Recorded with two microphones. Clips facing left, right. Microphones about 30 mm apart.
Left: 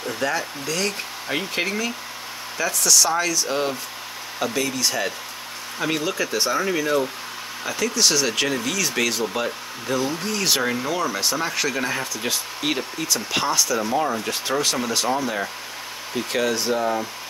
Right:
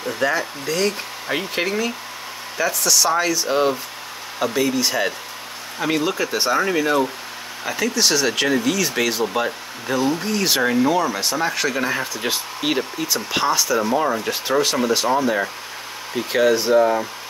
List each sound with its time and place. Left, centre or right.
0.0 s speech: centre
5.8 s speech: centre
12.1 s speech: centre